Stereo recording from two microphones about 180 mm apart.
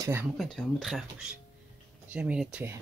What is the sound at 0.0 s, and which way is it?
Speech, 10° right (ahead or behind).